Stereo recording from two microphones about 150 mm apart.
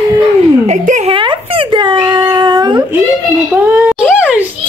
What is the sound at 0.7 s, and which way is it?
Speech, 50° right (ahead or behind).